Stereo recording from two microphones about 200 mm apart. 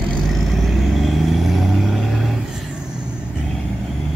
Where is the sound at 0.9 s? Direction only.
Centre (ahead or behind).